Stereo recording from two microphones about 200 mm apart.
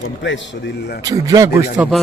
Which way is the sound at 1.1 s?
15° right (ahead or behind).